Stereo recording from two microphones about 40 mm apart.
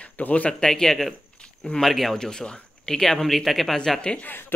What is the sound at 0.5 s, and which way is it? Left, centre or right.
Speech, centre.